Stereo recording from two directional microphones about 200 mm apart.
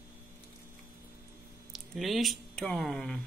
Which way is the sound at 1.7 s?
Centre (ahead or behind).